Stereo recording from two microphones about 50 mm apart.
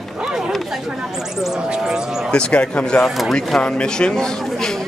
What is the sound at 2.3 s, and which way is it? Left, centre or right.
Speech, centre.